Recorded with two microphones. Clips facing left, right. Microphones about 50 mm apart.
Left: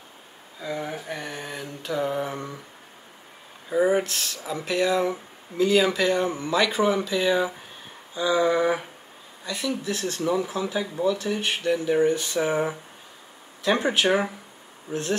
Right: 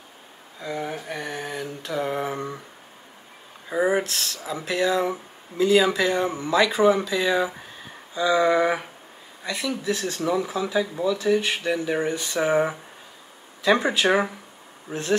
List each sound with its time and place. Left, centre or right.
0.6 s mantra: centre
2.1 s speech: centre
3.7 s speech: centre
4.0 s speech: centre
4.6 s speech: centre
8.1 s a sound: centre
8.5 s speech: centre
11.6 s speech: centre
12.4 s speech: right
13.7 s speech: centre